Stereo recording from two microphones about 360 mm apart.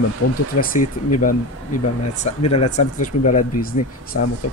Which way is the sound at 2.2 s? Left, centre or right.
Centre.